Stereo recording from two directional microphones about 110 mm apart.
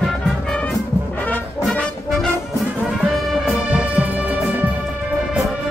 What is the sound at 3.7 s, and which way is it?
Music, 15° right (ahead or behind).